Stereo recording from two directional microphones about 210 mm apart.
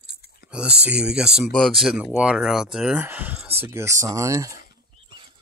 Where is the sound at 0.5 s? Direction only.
5° right (ahead or behind).